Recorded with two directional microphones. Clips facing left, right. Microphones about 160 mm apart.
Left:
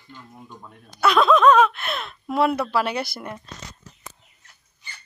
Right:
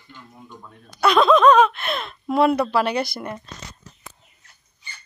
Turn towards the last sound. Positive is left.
turn(degrees=5)  # may be behind; listen again after turning